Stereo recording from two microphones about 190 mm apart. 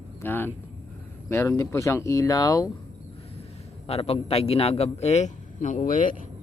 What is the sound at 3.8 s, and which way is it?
A man's voice, 30° left (ahead or behind).